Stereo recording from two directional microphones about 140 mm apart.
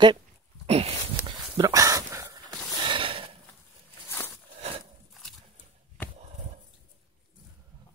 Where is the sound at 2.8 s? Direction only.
40° right (ahead or behind).